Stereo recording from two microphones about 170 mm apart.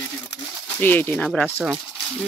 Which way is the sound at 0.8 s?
10° left (ahead or behind).